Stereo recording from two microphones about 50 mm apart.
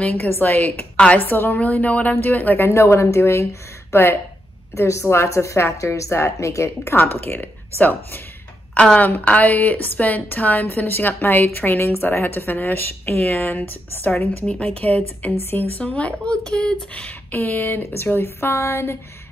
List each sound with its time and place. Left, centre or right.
0.0 s a woman's voice: left
2.6 s a woman's voice: left
3.2 s speech: left
3.9 s speech: left
4.7 s a woman's voice: left
7.0 s a woman's voice: left
8.7 s a woman's voice: left
14.4 s a woman's voice: centre
14.8 s speech: left
17.3 s speech: left